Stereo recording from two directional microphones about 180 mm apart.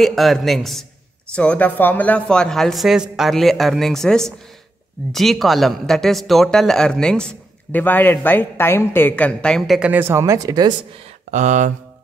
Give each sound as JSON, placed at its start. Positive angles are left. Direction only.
{"t": 0.0, "sound": "speech", "side_deg": 0}
{"t": 11.2, "sound": "speech", "side_deg": -40}